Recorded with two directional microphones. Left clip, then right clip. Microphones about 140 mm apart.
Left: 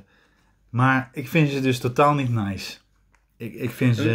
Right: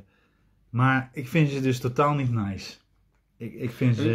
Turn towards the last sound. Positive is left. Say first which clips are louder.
# left 3 dB
turn(degrees=20)  # may be behind; listen again after turning